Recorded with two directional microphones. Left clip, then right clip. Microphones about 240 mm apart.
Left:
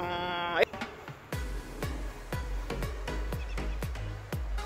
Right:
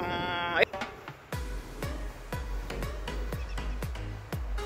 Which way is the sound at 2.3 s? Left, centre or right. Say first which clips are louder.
Left 1 dB; centre.